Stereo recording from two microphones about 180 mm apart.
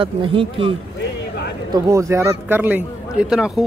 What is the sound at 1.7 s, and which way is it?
Speech, 15° right (ahead or behind).